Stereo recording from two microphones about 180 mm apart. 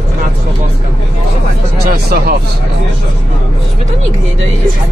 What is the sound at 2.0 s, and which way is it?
Speech, 60° right (ahead or behind).